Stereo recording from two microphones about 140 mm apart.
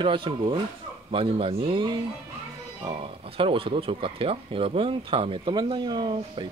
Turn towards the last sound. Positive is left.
turn(degrees=-35)  # may be behind; listen again after turning